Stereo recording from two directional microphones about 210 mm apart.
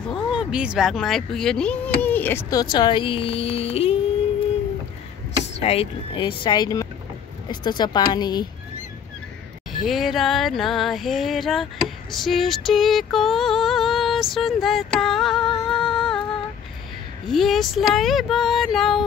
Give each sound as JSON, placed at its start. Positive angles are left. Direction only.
{"t": 0.1, "sound": "speech", "side_deg": -5}
{"t": 5.6, "sound": "speech", "side_deg": 30}
{"t": 9.8, "sound": "music", "side_deg": 0}
{"t": 15.6, "sound": "a sound", "side_deg": 0}
{"t": 17.3, "sound": "speech", "side_deg": 0}